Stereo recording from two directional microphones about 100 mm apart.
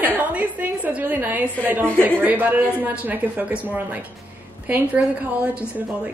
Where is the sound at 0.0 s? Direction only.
15° right (ahead or behind).